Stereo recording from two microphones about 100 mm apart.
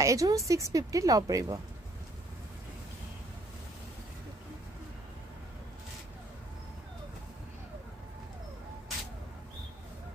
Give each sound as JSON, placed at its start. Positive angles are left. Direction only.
{"t": 0.0, "sound": "a woman's voice", "side_deg": -35}